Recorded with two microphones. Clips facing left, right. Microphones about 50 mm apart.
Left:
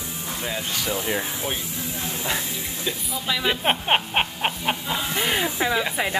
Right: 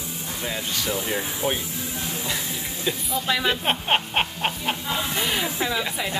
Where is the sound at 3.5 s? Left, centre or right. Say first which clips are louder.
Left 5 dB; centre.